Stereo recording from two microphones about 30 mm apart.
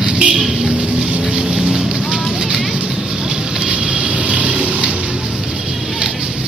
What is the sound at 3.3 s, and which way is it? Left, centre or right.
Vehicle, right.